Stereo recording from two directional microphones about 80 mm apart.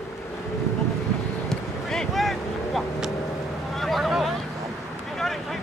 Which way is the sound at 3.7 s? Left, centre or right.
Centre.